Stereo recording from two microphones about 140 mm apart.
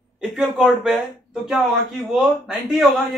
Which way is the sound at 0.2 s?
Centre (ahead or behind).